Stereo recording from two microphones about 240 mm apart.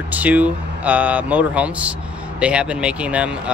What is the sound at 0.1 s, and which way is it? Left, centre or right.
Speech, centre.